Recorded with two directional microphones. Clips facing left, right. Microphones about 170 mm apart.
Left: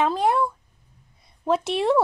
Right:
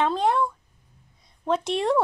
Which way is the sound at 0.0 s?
10° left (ahead or behind).